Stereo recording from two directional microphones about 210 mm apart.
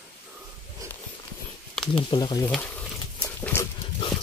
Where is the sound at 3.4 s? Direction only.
10° left (ahead or behind).